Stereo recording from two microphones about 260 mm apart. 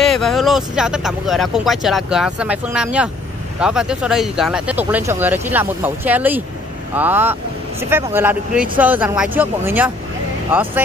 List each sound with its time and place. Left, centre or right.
0.0 s speech: centre